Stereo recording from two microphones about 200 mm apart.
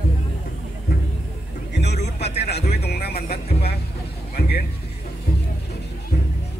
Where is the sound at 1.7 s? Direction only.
55° left (ahead or behind).